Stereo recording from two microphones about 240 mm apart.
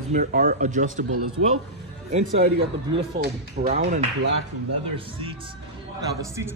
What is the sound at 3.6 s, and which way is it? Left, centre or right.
Speech, right.